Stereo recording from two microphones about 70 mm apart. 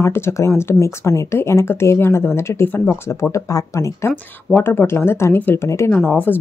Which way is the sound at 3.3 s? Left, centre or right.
Left.